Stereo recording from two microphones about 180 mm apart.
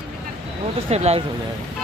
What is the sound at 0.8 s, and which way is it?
Speech, 35° right (ahead or behind).